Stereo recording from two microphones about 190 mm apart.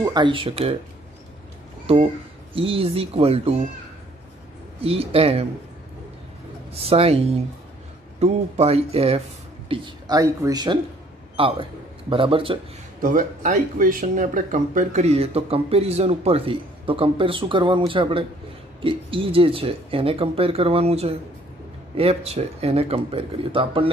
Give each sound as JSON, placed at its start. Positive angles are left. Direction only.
{"t": 0.0, "sound": "speech", "side_deg": -25}
{"t": 1.9, "sound": "speech", "side_deg": -30}
{"t": 4.8, "sound": "speech", "side_deg": -30}
{"t": 6.7, "sound": "a man's voice", "side_deg": -30}
{"t": 13.0, "sound": "speech", "side_deg": -45}